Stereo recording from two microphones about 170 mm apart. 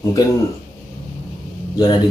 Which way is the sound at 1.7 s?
20° left (ahead or behind).